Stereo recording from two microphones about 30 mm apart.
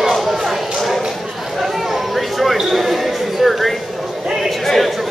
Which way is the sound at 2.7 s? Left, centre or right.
Centre.